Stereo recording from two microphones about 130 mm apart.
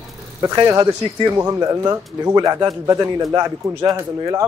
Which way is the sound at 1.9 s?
30° right (ahead or behind).